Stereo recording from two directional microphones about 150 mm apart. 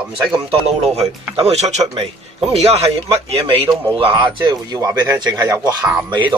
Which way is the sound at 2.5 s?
45° right (ahead or behind).